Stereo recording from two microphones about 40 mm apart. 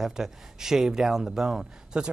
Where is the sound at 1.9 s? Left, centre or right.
Right.